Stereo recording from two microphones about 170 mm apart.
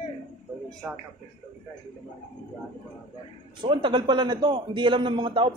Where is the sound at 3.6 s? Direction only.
30° right (ahead or behind).